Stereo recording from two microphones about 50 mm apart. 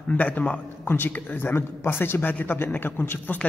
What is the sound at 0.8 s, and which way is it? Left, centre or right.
A man's voice, left.